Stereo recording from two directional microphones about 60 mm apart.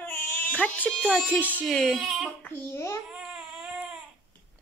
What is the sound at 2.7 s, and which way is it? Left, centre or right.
Speech, left.